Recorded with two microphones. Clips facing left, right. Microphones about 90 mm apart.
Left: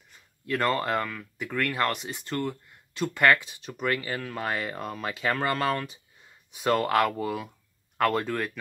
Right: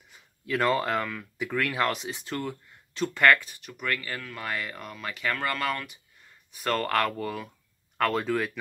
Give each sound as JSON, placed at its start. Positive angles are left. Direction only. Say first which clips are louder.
{"t": 0.1, "sound": "speech", "louder": "even", "side_deg": 0}
{"t": 3.4, "sound": "speech", "louder": "left 3 dB", "side_deg": 20}
{"t": 4.2, "sound": "speech", "louder": "left 3 dB", "side_deg": 35}
{"t": 6.2, "sound": "speech", "louder": "left 4 dB", "side_deg": 15}